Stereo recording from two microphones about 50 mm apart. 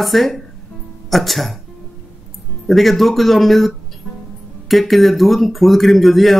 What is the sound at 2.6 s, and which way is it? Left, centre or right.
Speech, centre.